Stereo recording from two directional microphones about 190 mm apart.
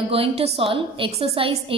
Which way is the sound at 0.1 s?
30° right (ahead or behind).